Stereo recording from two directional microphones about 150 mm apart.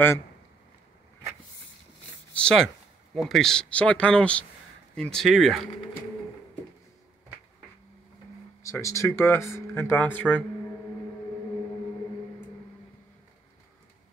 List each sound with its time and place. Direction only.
2.3 s speech: 5° left (ahead or behind)
8.6 s speech: 20° left (ahead or behind)